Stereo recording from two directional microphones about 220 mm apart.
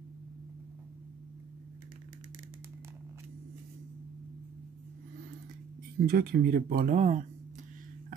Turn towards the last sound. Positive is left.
turn(degrees=-35)  # may be behind; listen again after turning